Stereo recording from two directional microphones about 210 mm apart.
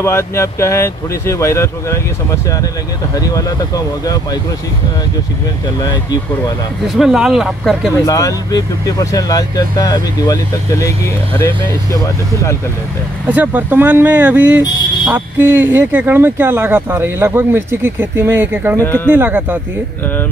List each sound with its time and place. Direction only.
0.0 s speech: 10° left (ahead or behind)
3.2 s speech: 15° left (ahead or behind)
6.9 s speech: centre (ahead or behind)
8.0 s speech: 15° left (ahead or behind)
13.3 s speech: 5° right (ahead or behind)
18.8 s speech: 10° left (ahead or behind)
19.0 s speech: 10° right (ahead or behind)